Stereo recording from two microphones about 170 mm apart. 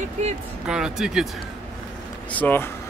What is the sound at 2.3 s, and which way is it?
Speech, 10° left (ahead or behind).